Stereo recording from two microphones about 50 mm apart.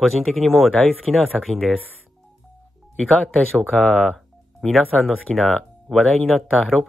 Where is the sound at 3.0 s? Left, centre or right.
Left.